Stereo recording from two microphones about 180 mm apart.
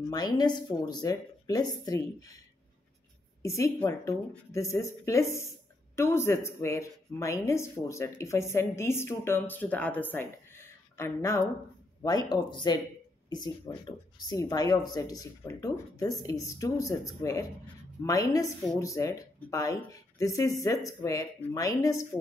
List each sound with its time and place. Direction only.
0.0 s speech: 20° left (ahead or behind)
3.4 s speech: 15° left (ahead or behind)